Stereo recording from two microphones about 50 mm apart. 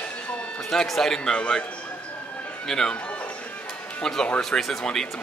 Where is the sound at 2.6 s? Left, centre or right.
Centre.